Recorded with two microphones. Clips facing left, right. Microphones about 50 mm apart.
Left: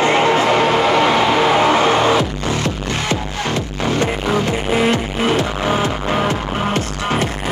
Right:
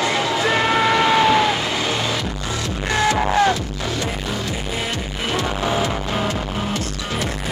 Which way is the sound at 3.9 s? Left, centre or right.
Left.